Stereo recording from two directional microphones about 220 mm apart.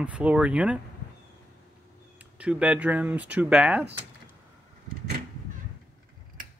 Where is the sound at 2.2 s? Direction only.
5° right (ahead or behind).